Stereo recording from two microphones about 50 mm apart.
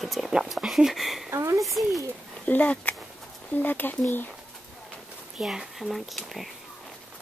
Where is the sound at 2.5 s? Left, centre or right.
Left.